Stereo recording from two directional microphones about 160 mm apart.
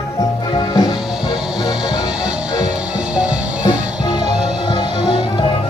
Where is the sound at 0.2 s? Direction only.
25° left (ahead or behind).